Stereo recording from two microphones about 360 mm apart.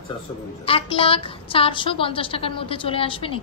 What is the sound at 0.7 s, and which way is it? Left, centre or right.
A woman's voice, centre.